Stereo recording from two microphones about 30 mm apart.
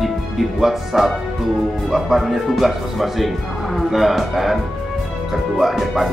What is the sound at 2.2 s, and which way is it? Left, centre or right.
Speech, centre.